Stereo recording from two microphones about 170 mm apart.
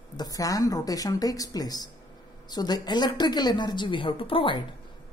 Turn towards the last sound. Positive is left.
turn(degrees=30)  # may be behind; listen again after turning